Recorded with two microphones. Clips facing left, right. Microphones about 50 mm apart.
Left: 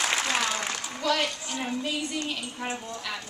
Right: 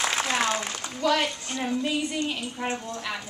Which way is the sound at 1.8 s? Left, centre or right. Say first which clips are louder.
Right 3 dB; centre.